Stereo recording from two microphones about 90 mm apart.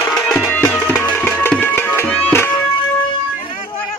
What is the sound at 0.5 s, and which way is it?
Music, 20° left (ahead or behind).